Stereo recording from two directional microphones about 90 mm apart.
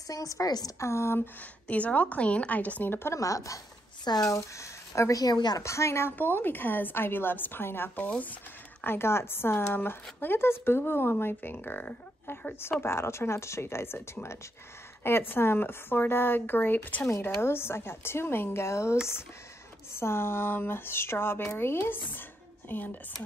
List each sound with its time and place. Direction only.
0.1 s a woman's voice: 40° left (ahead or behind)
0.8 s a woman's voice: 30° left (ahead or behind); by 4.3 s 45° left (ahead or behind)
4.3 s speech: 35° left (ahead or behind); by 5.6 s 50° left (ahead or behind)
5.6 s a woman's voice: 30° left (ahead or behind)